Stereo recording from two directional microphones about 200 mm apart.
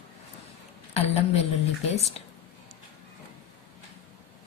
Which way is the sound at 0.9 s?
30° left (ahead or behind).